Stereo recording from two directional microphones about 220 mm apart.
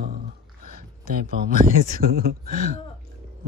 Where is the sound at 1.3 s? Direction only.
40° right (ahead or behind).